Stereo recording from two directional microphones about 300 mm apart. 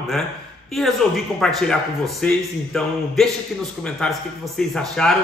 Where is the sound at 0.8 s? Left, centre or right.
Centre.